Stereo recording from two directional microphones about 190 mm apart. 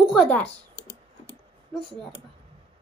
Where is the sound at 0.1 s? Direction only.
Centre (ahead or behind).